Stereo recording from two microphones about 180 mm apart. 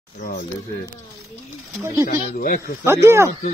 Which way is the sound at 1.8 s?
15° right (ahead or behind).